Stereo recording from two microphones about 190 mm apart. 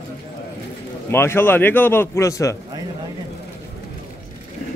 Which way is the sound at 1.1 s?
10° left (ahead or behind).